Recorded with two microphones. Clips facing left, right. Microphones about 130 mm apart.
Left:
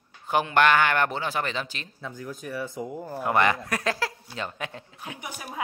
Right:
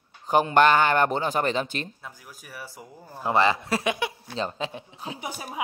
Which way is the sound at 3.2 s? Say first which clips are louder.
Right 1 dB; 25° right (ahead or behind).